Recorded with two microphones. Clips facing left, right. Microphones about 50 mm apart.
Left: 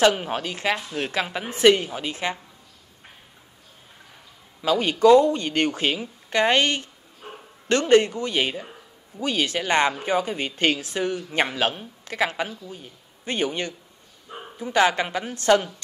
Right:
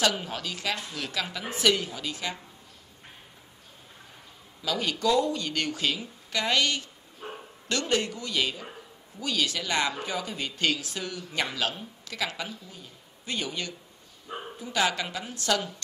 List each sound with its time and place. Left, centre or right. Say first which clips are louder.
0.0 s speech: left 8 dB; left
4.6 s speech: left 8 dB; left